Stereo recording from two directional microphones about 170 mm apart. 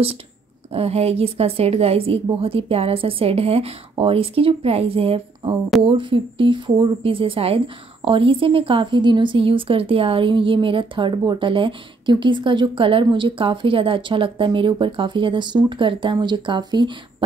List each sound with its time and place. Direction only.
0.7 s speech: 35° right (ahead or behind)